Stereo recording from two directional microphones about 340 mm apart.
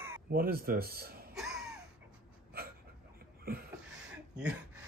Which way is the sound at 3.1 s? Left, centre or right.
Right.